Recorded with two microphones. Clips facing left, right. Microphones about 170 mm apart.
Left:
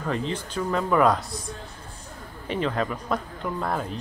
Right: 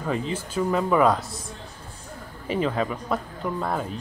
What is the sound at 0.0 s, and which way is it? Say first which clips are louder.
Speech: right 1 dB; 5° right (ahead or behind).